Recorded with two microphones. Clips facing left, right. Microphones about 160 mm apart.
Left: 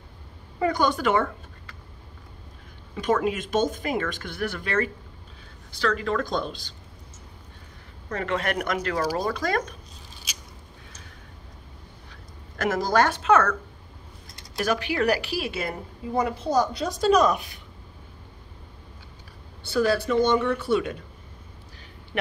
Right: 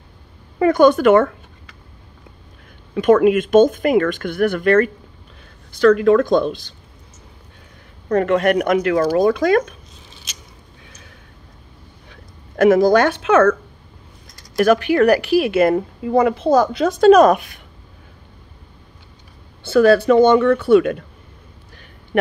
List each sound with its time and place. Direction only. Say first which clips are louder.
0.6 s speech: right 11 dB; 55° right (ahead or behind)
2.9 s speech: right 11 dB; 65° right (ahead or behind)
8.1 s a man's voice: right 12 dB; 50° right (ahead or behind)
12.1 s speech: right 3 dB; 55° right (ahead or behind)
14.6 s speech: right 11 dB; 60° right (ahead or behind)
20.1 s speech: right 10 dB; 65° right (ahead or behind)
22.1 s a sound: right 11 dB; 50° right (ahead or behind)